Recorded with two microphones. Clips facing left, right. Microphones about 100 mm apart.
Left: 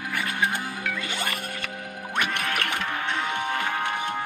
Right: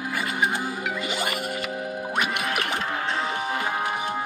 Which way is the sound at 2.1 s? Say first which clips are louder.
Even; 10° right (ahead or behind).